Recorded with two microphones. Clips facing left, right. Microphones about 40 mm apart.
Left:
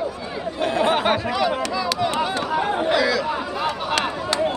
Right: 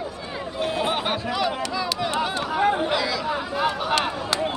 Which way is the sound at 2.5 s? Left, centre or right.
Centre.